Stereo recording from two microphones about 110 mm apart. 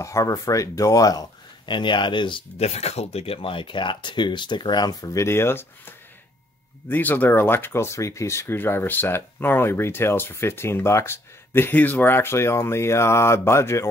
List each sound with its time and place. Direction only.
0.0 s speech: 30° left (ahead or behind)
1.7 s speech: 45° left (ahead or behind)
2.5 s speech: 75° left (ahead or behind); by 5.2 s 35° left (ahead or behind)
5.2 s speech: 25° left (ahead or behind)